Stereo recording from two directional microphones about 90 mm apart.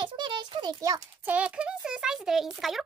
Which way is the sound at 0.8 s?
40° right (ahead or behind).